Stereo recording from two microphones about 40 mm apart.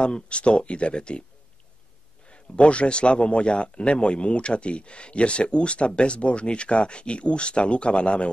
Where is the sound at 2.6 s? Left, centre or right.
Left.